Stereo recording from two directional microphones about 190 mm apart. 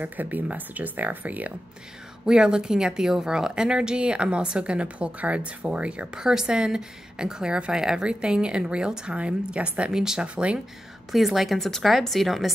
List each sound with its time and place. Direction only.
0.0 s a woman's voice: 10° right (ahead or behind)